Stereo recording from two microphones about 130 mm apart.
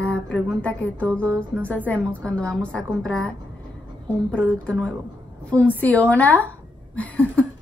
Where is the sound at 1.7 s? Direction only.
10° left (ahead or behind).